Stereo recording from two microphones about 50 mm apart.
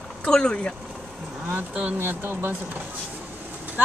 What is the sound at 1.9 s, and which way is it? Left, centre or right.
Speech, right.